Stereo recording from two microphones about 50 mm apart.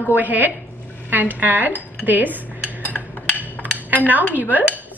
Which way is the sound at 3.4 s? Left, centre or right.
Right.